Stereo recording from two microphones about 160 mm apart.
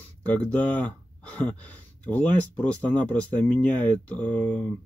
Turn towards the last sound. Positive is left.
turn(degrees=5)  # may be behind; listen again after turning